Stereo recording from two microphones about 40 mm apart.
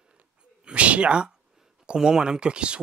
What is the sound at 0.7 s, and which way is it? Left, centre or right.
Speech, right.